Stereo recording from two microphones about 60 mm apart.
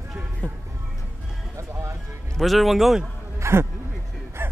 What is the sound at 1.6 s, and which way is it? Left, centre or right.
Music, right.